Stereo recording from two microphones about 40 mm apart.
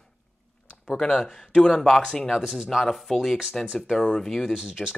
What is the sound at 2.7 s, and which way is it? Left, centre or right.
Speech, centre.